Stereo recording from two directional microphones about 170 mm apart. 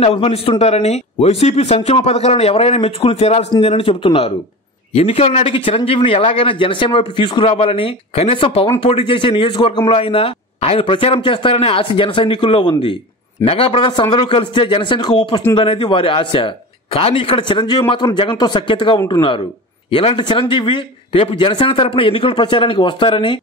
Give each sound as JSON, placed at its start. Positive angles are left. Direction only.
{"t": 0.0, "sound": "a man's voice", "side_deg": 35}
{"t": 18.9, "sound": "speech", "side_deg": 20}
{"t": 19.9, "sound": "speech", "side_deg": 30}